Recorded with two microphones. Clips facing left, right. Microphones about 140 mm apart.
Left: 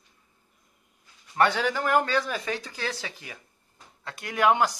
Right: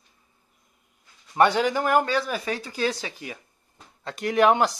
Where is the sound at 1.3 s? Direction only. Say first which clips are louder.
Right 4 dB; 15° right (ahead or behind).